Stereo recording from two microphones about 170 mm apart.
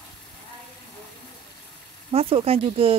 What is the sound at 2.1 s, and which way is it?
Speech, 35° right (ahead or behind).